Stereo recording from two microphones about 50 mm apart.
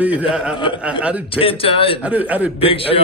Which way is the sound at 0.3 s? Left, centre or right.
Centre.